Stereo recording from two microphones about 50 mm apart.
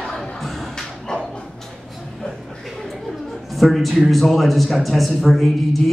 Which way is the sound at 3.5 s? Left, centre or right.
Centre.